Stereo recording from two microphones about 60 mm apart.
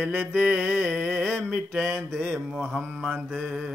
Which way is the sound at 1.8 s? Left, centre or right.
Centre.